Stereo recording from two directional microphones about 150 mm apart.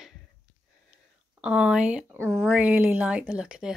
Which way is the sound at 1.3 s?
5° right (ahead or behind).